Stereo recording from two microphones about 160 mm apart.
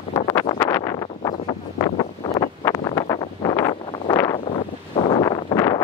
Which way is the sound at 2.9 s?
25° left (ahead or behind).